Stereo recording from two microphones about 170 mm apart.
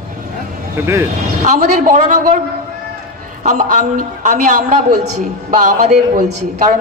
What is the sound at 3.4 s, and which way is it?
A woman's voice, 45° right (ahead or behind).